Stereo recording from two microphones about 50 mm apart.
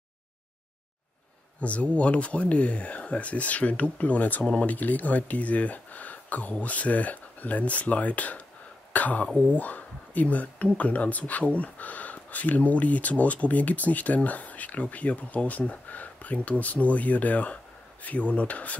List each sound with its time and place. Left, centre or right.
1.6 s speech: left